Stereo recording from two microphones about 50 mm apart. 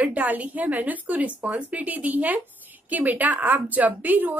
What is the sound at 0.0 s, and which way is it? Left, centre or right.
A woman's voice, right.